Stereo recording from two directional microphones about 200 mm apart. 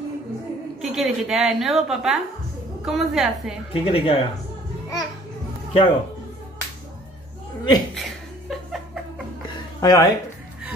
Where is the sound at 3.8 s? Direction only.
25° left (ahead or behind).